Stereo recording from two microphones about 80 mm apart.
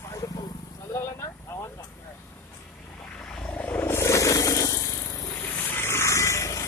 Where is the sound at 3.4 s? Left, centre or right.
Centre; by 5.4 s left.